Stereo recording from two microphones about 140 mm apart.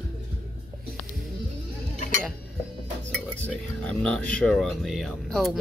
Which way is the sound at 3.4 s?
10° left (ahead or behind).